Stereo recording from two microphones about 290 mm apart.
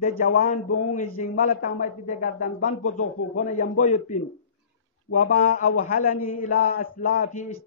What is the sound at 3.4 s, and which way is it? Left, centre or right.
Speech, left.